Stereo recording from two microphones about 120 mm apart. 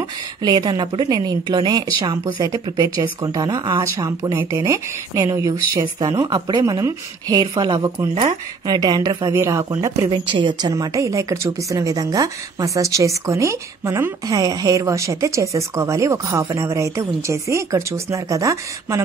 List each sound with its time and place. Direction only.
0.4 s speech: 35° right (ahead or behind)
8.1 s speech: 60° right (ahead or behind)
8.6 s speech: 35° right (ahead or behind)
9.3 s speech: 20° right (ahead or behind)
10.1 s speech: 40° right (ahead or behind)
10.7 s speech: 30° right (ahead or behind)